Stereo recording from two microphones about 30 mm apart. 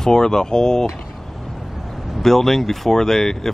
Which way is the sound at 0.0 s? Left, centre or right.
Left.